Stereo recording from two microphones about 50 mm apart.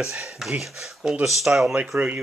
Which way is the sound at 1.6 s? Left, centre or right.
Right.